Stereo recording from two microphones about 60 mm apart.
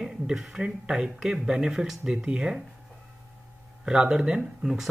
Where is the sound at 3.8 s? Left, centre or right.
Centre.